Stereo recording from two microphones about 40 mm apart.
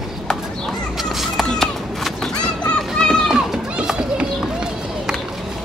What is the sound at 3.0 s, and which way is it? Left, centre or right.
Run, left.